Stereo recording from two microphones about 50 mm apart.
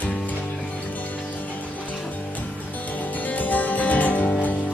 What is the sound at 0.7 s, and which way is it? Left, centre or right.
Music, left.